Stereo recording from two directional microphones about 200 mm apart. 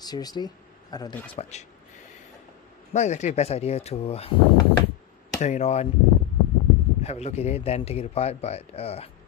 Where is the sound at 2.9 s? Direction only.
35° left (ahead or behind).